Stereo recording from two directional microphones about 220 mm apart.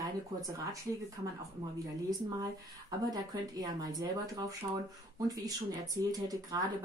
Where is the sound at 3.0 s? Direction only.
15° right (ahead or behind).